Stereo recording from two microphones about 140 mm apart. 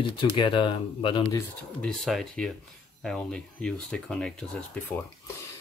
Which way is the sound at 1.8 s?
Centre (ahead or behind).